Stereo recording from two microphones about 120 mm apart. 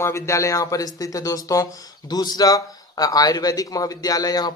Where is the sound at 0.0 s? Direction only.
25° left (ahead or behind).